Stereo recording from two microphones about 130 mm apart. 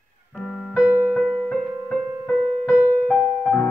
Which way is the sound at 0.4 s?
5° left (ahead or behind).